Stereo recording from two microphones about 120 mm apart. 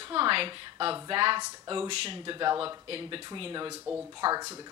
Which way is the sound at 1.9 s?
50° right (ahead or behind).